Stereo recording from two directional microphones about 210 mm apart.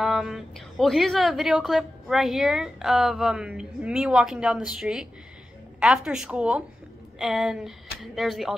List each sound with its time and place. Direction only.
0.0 s a woman's voice: centre (ahead or behind)